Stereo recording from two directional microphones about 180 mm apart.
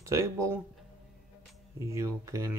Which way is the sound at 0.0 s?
15° right (ahead or behind).